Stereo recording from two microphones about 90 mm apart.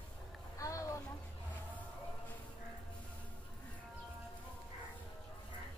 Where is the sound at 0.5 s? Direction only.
35° left (ahead or behind).